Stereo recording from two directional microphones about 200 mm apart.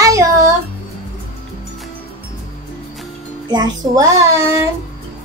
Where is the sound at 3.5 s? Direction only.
20° right (ahead or behind).